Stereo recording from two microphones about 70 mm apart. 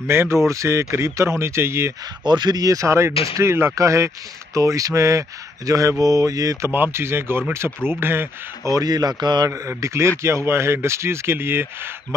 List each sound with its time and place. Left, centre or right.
0.0 s a man's voice: right
2.2 s speech: right
6.7 s a man's voice: right
8.6 s a man's voice: right
9.5 s a man's voice: right